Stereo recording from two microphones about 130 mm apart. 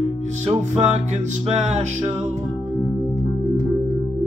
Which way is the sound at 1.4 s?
60° right (ahead or behind).